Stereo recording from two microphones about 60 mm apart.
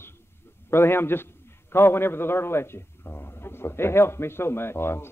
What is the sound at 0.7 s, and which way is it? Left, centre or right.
A man's voice, left.